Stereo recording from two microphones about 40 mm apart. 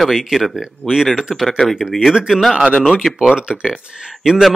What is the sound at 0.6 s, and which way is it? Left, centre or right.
Speech, centre.